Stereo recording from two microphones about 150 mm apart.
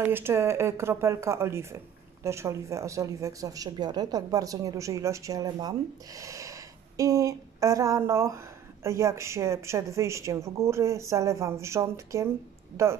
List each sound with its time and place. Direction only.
0.1 s speech: 15° right (ahead or behind)